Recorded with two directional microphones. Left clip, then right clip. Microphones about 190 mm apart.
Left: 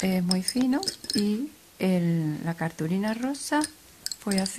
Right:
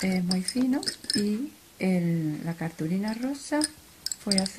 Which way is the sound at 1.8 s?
40° left (ahead or behind).